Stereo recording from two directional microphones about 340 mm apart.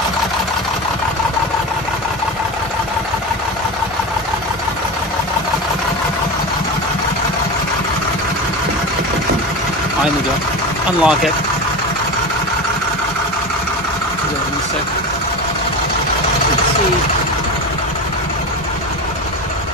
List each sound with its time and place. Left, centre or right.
11.0 s speech: centre